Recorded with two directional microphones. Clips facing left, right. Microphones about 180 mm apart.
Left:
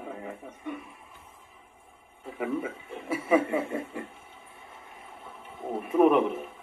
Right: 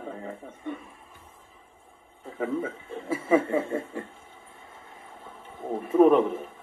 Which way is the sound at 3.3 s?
15° left (ahead or behind).